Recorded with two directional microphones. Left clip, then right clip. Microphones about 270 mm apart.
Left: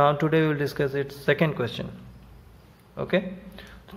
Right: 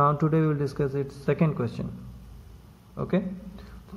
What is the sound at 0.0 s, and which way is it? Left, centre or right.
Speech, centre.